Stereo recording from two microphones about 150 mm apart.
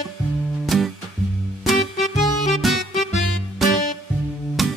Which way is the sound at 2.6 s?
Centre (ahead or behind).